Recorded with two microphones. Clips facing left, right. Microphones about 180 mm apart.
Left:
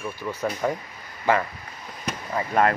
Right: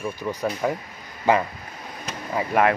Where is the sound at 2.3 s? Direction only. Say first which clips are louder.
Right 1 dB; 5° right (ahead or behind).